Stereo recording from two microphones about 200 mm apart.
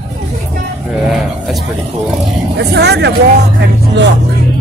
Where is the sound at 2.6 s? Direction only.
55° right (ahead or behind).